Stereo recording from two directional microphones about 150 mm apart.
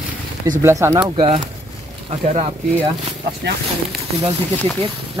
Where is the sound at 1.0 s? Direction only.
40° right (ahead or behind).